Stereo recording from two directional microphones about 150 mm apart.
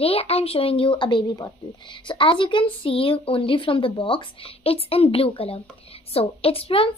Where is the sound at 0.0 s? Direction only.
40° left (ahead or behind).